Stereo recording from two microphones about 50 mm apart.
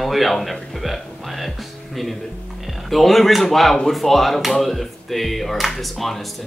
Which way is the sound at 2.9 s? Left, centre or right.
Centre.